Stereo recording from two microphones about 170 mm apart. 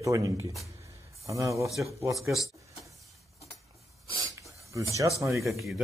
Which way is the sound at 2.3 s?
Centre (ahead or behind).